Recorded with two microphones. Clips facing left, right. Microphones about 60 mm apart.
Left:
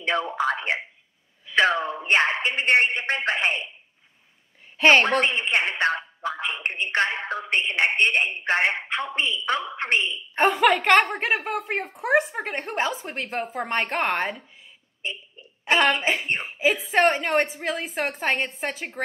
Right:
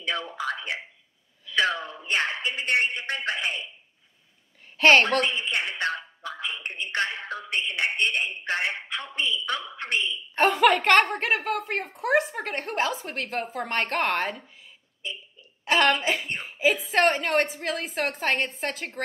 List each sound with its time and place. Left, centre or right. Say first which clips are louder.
0.0 s speech: left 6 dB; left
4.7 s a woman's voice: left 1 dB; centre
5.2 s a man's voice: left 4 dB; left
10.3 s a woman's voice: left 1 dB; centre
16.0 s speech: left 3 dB; left
16.9 s a woman's voice: left 3 dB; centre